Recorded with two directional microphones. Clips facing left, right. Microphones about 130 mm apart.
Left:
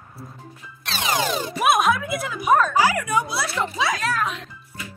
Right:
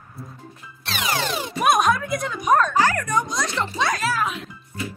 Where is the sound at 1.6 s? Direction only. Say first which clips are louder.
Right 1 dB; centre (ahead or behind).